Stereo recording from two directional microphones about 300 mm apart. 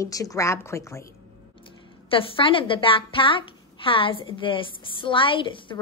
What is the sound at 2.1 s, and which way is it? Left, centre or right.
Speech, centre.